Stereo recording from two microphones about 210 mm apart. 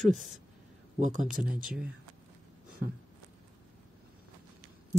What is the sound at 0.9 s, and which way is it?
Speech, 35° right (ahead or behind).